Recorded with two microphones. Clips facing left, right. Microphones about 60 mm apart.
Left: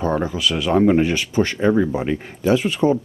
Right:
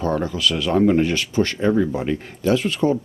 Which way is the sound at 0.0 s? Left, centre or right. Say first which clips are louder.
Left 1 dB; centre.